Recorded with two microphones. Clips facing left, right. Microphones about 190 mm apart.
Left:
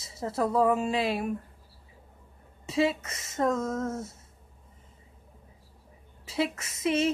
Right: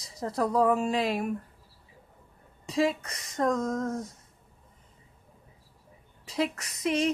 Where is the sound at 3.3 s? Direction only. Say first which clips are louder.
Even; 5° left (ahead or behind).